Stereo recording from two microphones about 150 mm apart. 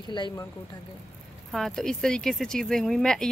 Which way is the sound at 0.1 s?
30° left (ahead or behind).